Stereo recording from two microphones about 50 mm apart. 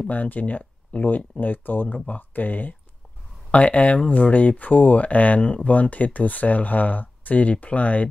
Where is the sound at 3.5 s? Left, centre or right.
Left.